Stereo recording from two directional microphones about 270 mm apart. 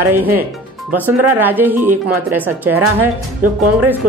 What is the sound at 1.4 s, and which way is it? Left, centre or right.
Speech, centre.